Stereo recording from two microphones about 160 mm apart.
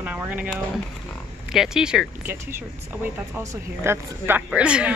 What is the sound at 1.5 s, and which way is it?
Speech, 5° right (ahead or behind).